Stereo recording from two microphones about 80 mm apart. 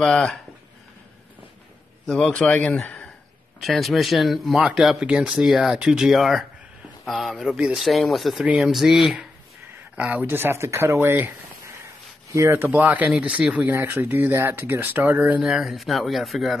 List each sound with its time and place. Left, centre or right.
0.0 s speech: centre
2.0 s speech: centre
3.6 s speech: centre
9.9 s speech: centre
13.7 s speech: right
15.4 s speech: centre